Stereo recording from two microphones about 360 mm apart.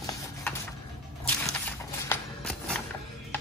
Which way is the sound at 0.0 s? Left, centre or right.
Centre.